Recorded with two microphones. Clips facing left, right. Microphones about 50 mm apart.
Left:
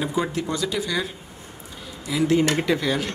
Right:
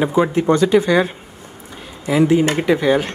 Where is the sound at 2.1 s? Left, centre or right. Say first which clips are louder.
Right 9 dB; right.